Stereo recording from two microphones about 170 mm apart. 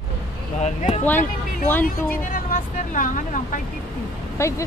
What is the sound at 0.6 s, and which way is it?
Speech, 40° left (ahead or behind).